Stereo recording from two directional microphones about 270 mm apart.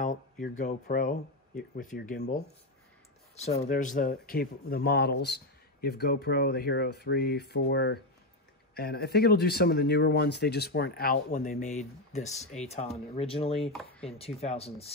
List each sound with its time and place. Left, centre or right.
0.0 s speech: left
13.6 s speech: centre
14.0 s speech: left